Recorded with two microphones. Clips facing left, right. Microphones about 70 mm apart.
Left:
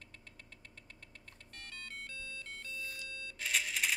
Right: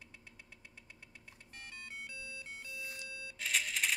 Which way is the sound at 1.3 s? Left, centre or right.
Centre.